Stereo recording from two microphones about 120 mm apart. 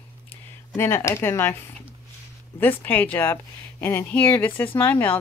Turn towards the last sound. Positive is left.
turn(degrees=15)  # may be behind; listen again after turning